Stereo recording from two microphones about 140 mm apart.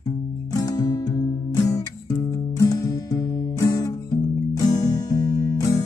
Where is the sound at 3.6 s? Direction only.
25° left (ahead or behind).